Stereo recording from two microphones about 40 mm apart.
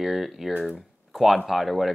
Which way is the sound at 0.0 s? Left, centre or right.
Centre.